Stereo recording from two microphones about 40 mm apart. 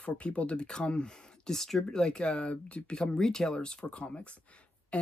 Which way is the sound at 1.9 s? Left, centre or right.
Left.